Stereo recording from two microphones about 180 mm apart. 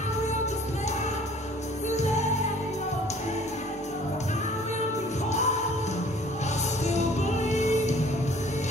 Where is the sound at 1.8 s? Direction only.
40° left (ahead or behind).